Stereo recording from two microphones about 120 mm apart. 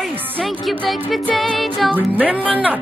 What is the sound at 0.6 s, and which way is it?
Music, centre (ahead or behind).